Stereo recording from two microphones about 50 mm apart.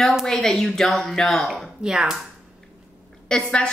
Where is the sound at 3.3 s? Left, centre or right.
Centre.